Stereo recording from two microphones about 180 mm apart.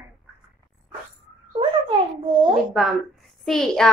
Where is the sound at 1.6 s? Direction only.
25° right (ahead or behind).